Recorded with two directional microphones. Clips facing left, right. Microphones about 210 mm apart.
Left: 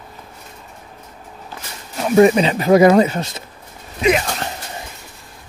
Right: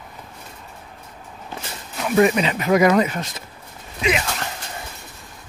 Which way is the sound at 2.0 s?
30° left (ahead or behind).